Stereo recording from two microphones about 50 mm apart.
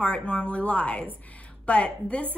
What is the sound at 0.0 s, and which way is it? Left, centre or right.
A woman's voice, left.